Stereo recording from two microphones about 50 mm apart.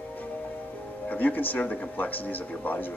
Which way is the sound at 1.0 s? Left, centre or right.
Left.